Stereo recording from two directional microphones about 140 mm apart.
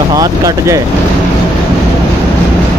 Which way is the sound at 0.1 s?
25° right (ahead or behind).